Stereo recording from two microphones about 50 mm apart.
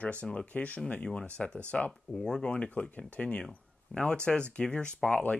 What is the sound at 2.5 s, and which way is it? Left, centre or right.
Speech, left.